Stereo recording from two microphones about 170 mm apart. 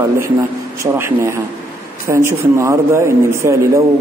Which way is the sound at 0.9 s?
15° right (ahead or behind).